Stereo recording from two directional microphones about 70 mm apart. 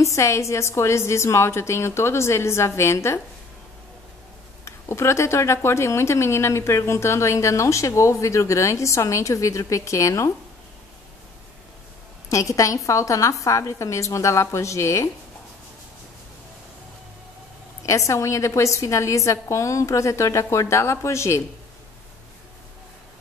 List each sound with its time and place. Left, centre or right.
0.0 s a woman's voice: left
4.6 s speech: left
12.3 s speech: left
17.8 s speech: left